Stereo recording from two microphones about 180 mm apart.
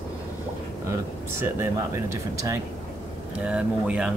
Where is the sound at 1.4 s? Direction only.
15° right (ahead or behind).